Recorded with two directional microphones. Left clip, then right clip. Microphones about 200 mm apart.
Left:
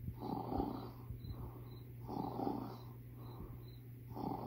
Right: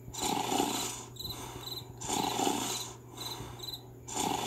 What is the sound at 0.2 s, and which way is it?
Roar, 30° right (ahead or behind).